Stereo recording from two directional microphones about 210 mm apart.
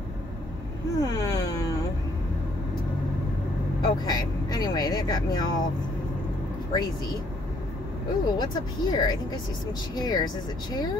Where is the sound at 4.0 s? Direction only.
20° left (ahead or behind).